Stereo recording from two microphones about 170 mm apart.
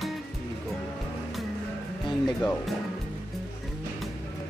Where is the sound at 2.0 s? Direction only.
5° left (ahead or behind).